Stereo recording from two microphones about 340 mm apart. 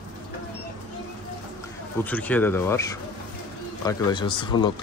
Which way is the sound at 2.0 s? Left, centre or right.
Centre.